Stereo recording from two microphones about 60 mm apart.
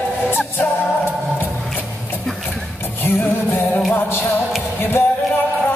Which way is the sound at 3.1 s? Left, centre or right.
Left.